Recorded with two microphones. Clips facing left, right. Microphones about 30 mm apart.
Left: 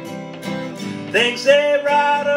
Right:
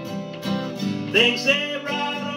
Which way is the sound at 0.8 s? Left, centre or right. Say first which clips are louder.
Left 1 dB; left.